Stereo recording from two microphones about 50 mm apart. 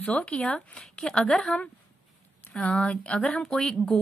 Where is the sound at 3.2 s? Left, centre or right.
Centre.